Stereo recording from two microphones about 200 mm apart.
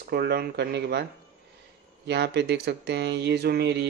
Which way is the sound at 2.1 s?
55° right (ahead or behind).